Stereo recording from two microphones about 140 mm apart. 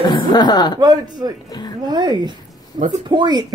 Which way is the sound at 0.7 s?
30° right (ahead or behind).